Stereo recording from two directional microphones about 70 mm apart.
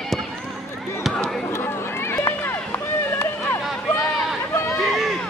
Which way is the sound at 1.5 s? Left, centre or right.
Left.